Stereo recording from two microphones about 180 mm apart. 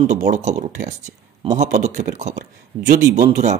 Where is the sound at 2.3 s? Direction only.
65° right (ahead or behind).